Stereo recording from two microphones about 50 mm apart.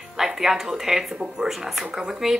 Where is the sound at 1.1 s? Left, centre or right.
Centre.